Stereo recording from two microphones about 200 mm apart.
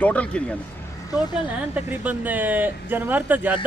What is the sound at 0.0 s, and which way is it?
Speech, 5° left (ahead or behind).